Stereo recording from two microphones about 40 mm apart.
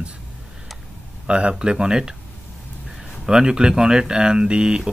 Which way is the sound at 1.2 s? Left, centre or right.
Right.